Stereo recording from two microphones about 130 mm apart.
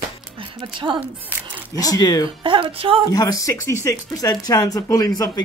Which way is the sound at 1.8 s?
30° left (ahead or behind).